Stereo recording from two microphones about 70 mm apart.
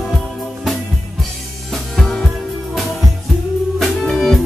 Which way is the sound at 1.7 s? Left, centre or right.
Centre.